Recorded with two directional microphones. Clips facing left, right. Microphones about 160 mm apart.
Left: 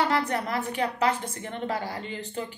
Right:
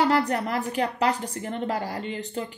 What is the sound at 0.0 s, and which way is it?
A woman's voice, 40° right (ahead or behind).